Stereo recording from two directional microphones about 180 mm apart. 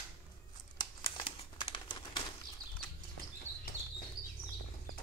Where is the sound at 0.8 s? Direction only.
25° left (ahead or behind).